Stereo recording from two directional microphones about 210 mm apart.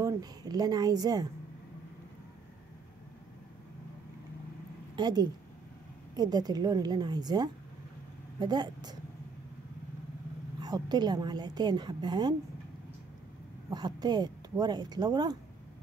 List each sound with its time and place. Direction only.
0.0 s a woman's voice: 15° right (ahead or behind)
4.9 s a woman's voice: 20° right (ahead or behind)
10.6 s a woman's voice: 20° right (ahead or behind)
13.7 s a woman's voice: 20° right (ahead or behind)